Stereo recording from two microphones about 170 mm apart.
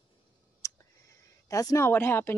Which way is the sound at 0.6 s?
20° left (ahead or behind).